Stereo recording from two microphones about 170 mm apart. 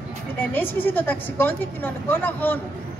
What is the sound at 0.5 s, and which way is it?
Speech, 10° left (ahead or behind).